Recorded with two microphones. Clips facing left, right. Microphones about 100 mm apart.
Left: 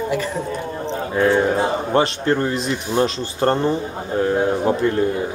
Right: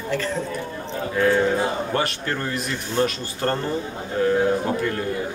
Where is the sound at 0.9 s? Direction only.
25° left (ahead or behind).